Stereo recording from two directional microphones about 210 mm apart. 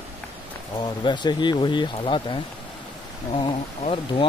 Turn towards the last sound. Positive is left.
turn(degrees=25)  # may be behind; listen again after turning